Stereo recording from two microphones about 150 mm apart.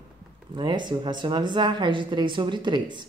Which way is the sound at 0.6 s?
30° right (ahead or behind).